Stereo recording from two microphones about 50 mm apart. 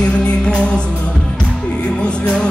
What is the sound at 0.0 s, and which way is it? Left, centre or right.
Music, centre.